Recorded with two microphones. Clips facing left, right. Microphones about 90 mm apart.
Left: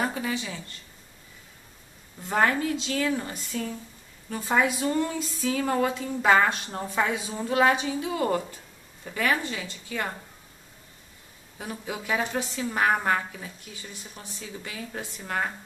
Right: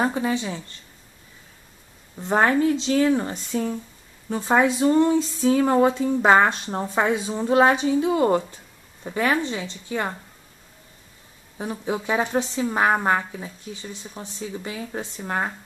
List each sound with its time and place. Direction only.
0.0 s a woman's voice: 30° right (ahead or behind)
2.1 s a woman's voice: 25° right (ahead or behind)
11.5 s a woman's voice: 25° right (ahead or behind)